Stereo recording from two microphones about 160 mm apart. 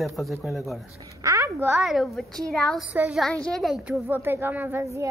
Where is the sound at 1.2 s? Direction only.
20° right (ahead or behind).